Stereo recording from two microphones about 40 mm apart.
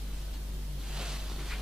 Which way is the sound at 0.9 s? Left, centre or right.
Centre.